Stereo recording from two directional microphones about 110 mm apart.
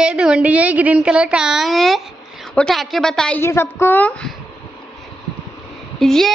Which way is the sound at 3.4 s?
25° left (ahead or behind).